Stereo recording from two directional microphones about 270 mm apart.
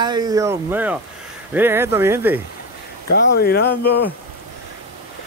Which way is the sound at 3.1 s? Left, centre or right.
Left.